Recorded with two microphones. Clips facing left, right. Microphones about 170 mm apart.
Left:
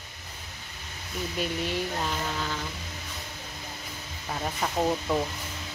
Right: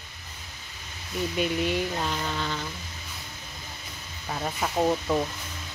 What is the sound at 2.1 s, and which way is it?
Speech, 5° left (ahead or behind).